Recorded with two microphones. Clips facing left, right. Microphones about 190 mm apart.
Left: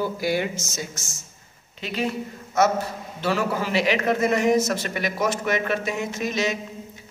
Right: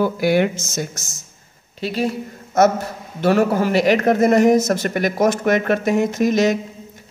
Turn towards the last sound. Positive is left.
turn(degrees=-45)  # may be behind; listen again after turning